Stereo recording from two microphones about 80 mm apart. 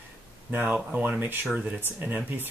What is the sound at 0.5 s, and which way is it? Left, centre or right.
Speech, right.